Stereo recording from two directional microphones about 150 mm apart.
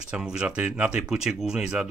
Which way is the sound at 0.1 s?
5° right (ahead or behind).